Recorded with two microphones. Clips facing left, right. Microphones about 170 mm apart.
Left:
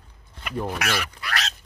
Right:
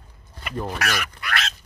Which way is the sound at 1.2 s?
35° left (ahead or behind).